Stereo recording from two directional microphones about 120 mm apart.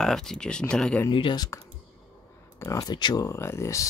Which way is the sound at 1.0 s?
40° left (ahead or behind).